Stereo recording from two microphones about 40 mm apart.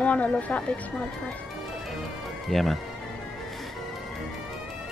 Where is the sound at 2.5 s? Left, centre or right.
Centre.